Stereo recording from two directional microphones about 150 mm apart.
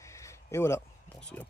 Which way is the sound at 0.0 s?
20° left (ahead or behind).